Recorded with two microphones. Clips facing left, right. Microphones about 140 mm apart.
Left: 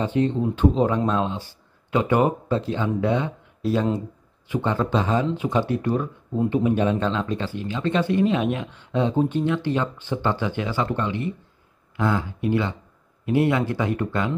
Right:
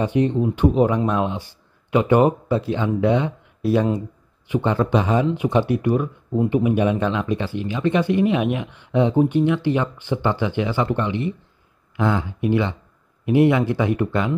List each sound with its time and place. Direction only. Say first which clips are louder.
0.0 s speech: right 3 dB; 15° right (ahead or behind)